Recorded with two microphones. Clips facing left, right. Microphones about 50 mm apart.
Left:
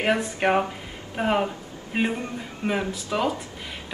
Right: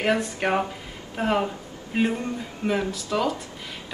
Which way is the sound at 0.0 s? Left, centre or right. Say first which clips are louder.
Left 1 dB; centre.